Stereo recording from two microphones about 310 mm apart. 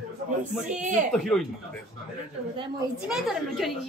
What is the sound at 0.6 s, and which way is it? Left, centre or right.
Speech, right.